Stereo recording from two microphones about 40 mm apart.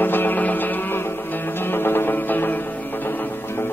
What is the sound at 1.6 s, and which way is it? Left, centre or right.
Music, left.